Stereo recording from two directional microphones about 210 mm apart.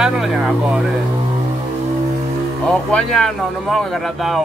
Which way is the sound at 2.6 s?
5° left (ahead or behind).